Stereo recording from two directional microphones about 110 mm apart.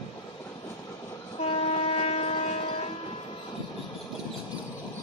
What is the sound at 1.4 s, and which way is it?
Train, 65° left (ahead or behind).